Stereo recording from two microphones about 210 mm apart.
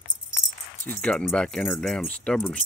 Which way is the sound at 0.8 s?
5° left (ahead or behind).